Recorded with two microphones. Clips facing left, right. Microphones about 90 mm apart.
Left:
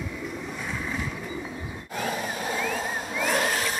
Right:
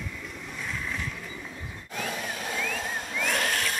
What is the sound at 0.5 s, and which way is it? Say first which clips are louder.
Vehicle: right 1 dB; 5° left (ahead or behind).